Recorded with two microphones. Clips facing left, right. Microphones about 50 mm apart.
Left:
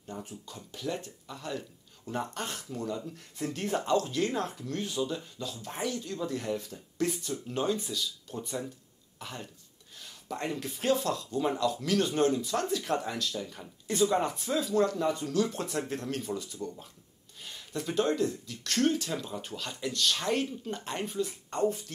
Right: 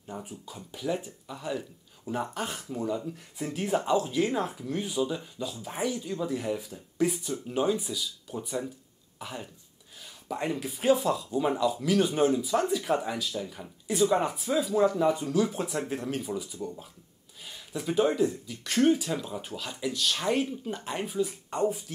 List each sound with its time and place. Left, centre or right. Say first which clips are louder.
0.1 s speech: right 2 dB; centre